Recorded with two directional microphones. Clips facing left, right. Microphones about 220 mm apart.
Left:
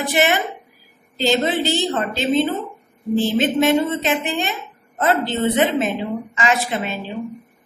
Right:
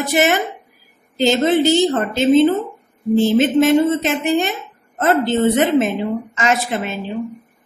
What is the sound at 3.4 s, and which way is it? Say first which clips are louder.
A man's voice: right 4 dB; 50° right (ahead or behind).